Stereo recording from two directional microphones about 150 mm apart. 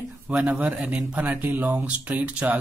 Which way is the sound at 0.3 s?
5° right (ahead or behind).